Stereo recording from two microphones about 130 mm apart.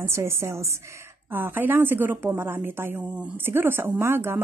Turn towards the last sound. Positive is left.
turn(degrees=-20)  # may be behind; listen again after turning